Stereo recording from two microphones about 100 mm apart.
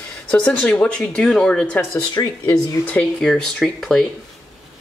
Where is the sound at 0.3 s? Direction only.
10° left (ahead or behind).